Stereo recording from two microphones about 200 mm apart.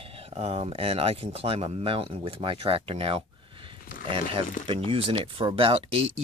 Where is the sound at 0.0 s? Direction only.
30° right (ahead or behind).